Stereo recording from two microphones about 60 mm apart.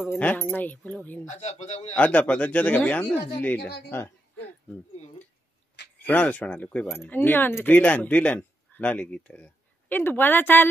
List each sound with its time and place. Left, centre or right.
0.2 s speech: left
2.0 s speech: left
6.0 s speech: left